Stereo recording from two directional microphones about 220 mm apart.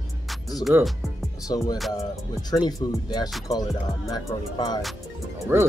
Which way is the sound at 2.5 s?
20° left (ahead or behind).